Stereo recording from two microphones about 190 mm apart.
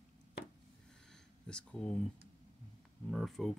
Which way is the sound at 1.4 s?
5° left (ahead or behind).